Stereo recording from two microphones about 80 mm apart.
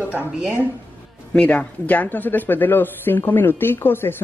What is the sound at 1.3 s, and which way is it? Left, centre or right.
Speech, centre.